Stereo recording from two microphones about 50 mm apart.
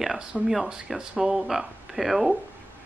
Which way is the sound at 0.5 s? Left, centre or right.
Centre.